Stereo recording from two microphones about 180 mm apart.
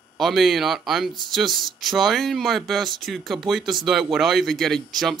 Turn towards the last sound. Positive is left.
turn(degrees=0)  # may be behind; listen again after turning